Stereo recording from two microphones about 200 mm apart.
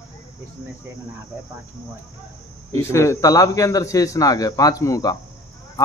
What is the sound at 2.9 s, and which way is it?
A man's voice, 15° left (ahead or behind).